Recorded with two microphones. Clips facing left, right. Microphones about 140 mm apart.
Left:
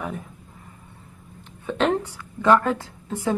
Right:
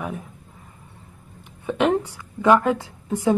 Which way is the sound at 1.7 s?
10° right (ahead or behind).